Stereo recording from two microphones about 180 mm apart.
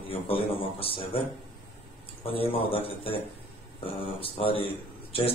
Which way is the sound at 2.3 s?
30° left (ahead or behind).